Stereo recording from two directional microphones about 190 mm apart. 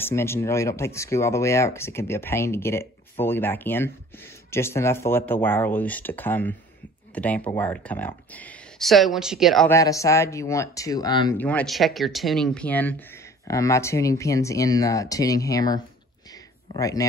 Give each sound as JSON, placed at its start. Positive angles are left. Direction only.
{"t": 0.0, "sound": "speech", "side_deg": 15}
{"t": 9.7, "sound": "speech", "side_deg": 15}
{"t": 11.3, "sound": "speech", "side_deg": 5}